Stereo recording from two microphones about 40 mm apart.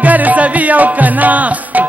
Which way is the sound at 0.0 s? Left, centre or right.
Right.